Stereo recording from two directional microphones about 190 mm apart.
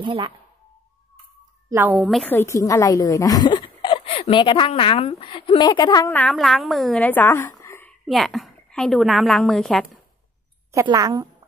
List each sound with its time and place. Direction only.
0.0 s speech: 25° right (ahead or behind)
1.7 s speech: 10° right (ahead or behind)
2.0 s a woman's voice: centre (ahead or behind)
2.3 s speech: 15° left (ahead or behind)
6.1 s speech: 5° left (ahead or behind)
8.1 s a woman's voice: centre (ahead or behind)
10.7 s a woman's voice: 15° right (ahead or behind)